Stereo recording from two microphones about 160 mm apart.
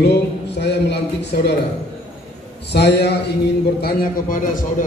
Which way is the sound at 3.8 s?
60° left (ahead or behind).